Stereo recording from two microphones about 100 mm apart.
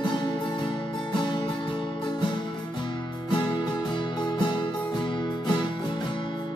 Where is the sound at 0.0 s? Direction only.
50° left (ahead or behind).